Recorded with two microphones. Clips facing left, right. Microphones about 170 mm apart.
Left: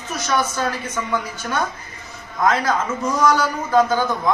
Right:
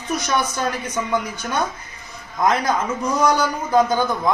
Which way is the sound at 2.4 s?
15° right (ahead or behind).